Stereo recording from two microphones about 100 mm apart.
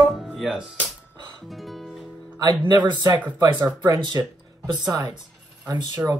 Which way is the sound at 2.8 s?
50° right (ahead or behind).